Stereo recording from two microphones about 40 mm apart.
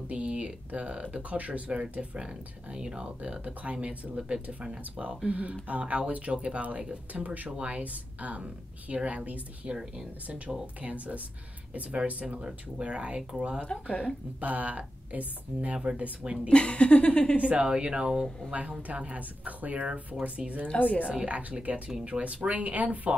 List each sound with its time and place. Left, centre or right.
0.1 s speech: right
1.7 s speech: right
9.7 s speech: centre
10.8 s speech: right
12.4 s speech: right
16.4 s speech: left
17.6 s speech: right
20.6 s a woman's voice: left
21.3 s speech: right